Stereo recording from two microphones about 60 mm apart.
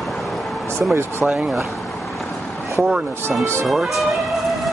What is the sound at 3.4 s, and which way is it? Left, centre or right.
Speech, right.